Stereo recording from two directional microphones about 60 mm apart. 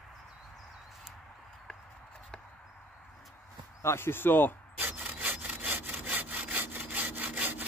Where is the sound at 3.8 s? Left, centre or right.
Left.